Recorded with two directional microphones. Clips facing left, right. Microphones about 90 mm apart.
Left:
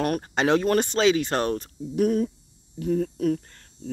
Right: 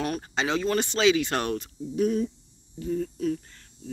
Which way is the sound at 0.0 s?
55° left (ahead or behind).